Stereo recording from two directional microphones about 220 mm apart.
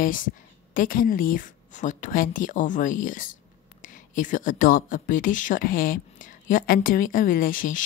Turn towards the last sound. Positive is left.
turn(degrees=40)  # may be behind; listen again after turning